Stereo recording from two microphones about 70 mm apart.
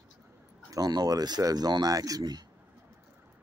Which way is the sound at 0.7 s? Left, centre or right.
Right.